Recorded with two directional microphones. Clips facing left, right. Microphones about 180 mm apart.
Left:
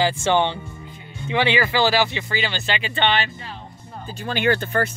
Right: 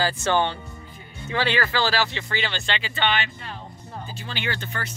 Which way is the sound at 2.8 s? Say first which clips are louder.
Left 4 dB; 30° left (ahead or behind).